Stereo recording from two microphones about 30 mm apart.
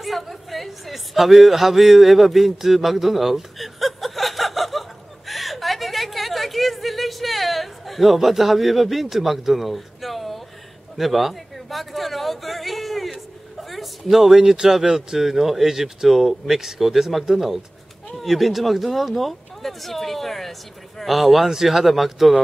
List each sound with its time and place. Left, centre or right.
0.0 s a sound: centre
14.7 s speech: centre
18.2 s speech: centre
21.5 s speech: centre
21.7 s speech: centre